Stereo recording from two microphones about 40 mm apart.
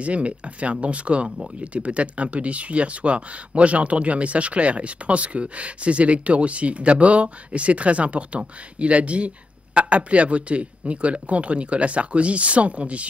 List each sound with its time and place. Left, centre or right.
0.0 s speech: right